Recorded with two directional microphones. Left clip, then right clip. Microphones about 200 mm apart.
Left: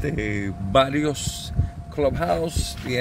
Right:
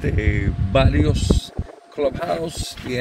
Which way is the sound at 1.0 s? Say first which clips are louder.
Right 3 dB; 5° right (ahead or behind).